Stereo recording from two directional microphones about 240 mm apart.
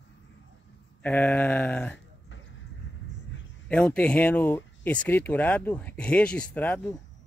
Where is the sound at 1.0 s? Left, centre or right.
Centre.